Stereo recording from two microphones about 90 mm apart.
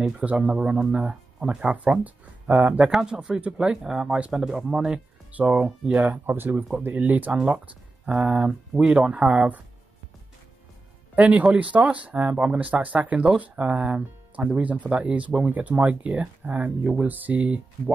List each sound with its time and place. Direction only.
0.0 s speech: 15° right (ahead or behind)
11.1 s speech: 15° right (ahead or behind)